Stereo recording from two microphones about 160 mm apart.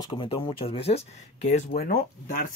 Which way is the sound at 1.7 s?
65° left (ahead or behind).